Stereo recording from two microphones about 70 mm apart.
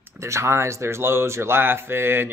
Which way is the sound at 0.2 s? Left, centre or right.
Right.